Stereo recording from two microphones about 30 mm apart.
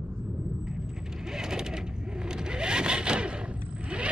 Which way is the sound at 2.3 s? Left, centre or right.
Right.